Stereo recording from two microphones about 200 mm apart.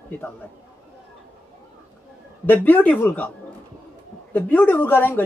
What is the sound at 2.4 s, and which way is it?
Speech, 10° left (ahead or behind).